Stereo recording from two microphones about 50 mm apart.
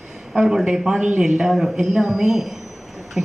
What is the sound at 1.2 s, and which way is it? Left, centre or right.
A man's voice, centre.